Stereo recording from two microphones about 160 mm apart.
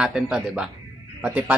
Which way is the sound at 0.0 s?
5° right (ahead or behind).